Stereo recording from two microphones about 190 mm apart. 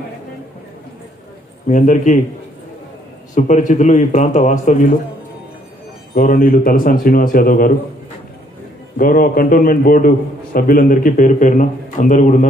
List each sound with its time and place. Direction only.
1.7 s a man's voice: 40° left (ahead or behind)
3.3 s a man's voice: 40° left (ahead or behind)
6.1 s a man's voice: 45° left (ahead or behind)
8.9 s a man's voice: 50° left (ahead or behind)